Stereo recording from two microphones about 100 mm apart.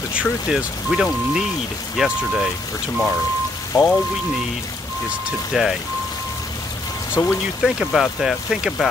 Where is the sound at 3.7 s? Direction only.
35° left (ahead or behind).